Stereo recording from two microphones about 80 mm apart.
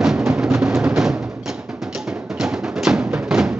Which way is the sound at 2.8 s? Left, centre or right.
Centre.